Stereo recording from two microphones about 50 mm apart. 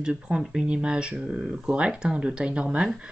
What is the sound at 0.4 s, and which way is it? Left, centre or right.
Speech, centre.